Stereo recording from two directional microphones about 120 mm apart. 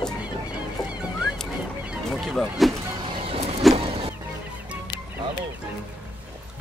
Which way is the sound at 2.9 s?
40° right (ahead or behind).